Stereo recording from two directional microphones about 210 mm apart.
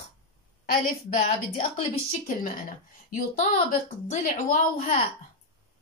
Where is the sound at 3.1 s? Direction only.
35° left (ahead or behind).